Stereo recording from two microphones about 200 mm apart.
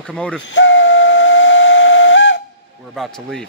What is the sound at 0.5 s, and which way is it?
Steam whistle, 65° left (ahead or behind).